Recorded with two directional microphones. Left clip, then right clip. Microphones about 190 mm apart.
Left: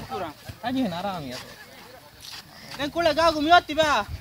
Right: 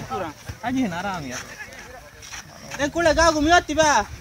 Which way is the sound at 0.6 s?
50° left (ahead or behind).